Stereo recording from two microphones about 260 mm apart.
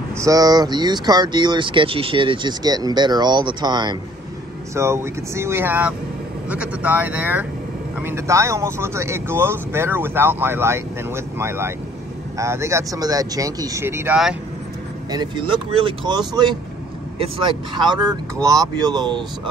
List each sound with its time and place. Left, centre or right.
0.2 s speech: centre
15.0 s speech: centre